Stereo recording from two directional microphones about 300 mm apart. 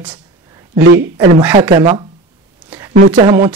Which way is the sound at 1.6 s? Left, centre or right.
Centre.